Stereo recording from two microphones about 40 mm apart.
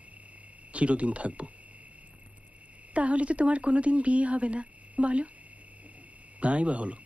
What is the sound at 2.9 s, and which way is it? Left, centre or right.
Speech, right.